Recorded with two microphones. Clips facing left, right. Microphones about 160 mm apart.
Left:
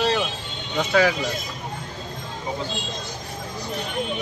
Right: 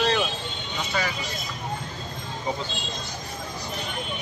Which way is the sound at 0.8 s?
90° left.